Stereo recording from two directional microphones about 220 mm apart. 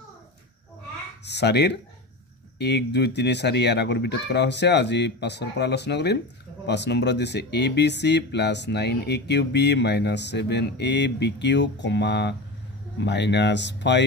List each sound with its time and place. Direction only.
1.2 s speech: 50° left (ahead or behind)